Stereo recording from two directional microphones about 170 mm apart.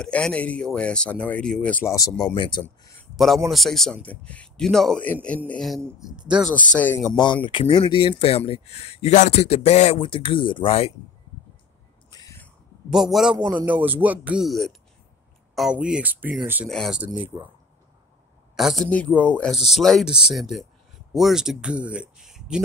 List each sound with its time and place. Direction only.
0.0 s speech: 5° left (ahead or behind)
2.2 s speech: 30° left (ahead or behind)
2.6 s a man's voice: 5° left (ahead or behind)
6.7 s speech: 10° left (ahead or behind)
7.4 s speech: 30° left (ahead or behind)
12.1 s a sound: 20° left (ahead or behind)
12.9 s a man's voice: 5° right (ahead or behind)
16.6 s a man's voice: centre (ahead or behind)
17.1 s speech: 30° right (ahead or behind)
18.6 s a man's voice: centre (ahead or behind)